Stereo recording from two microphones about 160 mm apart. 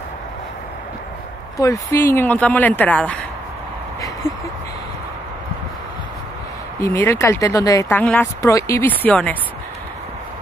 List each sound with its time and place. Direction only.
1.6 s a woman's voice: 20° left (ahead or behind)
6.8 s a woman's voice: 15° left (ahead or behind)
8.0 s a woman's voice: 10° left (ahead or behind)
8.4 s a woman's voice: 20° left (ahead or behind)